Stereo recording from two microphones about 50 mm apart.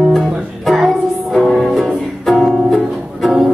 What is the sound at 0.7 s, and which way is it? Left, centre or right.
Music, centre.